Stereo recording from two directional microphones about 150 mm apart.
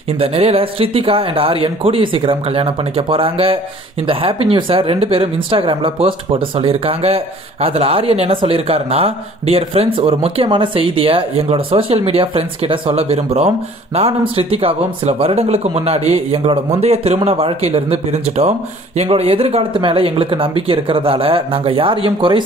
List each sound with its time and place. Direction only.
0.2 s speech: 40° right (ahead or behind)
18.9 s speech: 45° right (ahead or behind)